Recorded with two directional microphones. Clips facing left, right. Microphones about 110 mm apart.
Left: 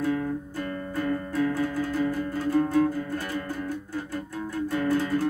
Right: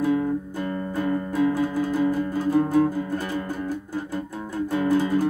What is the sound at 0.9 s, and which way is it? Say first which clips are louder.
Music: right 3 dB; 15° right (ahead or behind).